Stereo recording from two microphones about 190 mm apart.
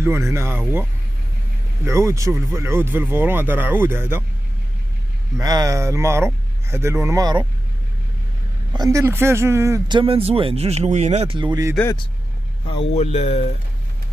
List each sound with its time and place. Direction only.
0.0 s speech: 15° right (ahead or behind)
1.9 s speech: 15° right (ahead or behind)
5.4 s speech: 20° right (ahead or behind)
8.7 s speech: 15° right (ahead or behind)
11.7 s speech: 10° left (ahead or behind)
12.9 s speech: 35° left (ahead or behind)